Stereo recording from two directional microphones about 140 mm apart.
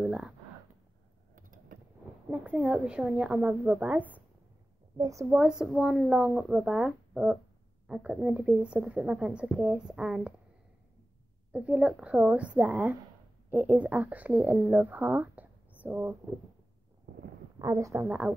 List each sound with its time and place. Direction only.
0.0 s a sound: 5° right (ahead or behind)
1.3 s a sound: 70° right (ahead or behind)
2.3 s speech: 10° right (ahead or behind)
4.9 s speech: 25° right (ahead or behind)
5.3 s speech: 5° right (ahead or behind)
11.5 s speech: 10° right (ahead or behind)
17.6 s speech: 20° right (ahead or behind)
18.0 s speech: 5° right (ahead or behind)